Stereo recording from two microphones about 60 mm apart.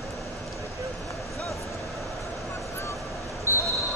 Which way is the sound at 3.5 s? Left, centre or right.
Left.